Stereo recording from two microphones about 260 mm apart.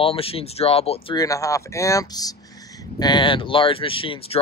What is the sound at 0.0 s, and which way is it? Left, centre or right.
Speech, left.